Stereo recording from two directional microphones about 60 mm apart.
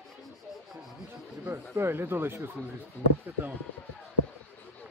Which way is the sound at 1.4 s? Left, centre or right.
Right.